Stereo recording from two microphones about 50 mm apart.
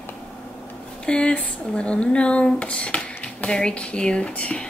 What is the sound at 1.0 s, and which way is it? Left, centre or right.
Speech, centre.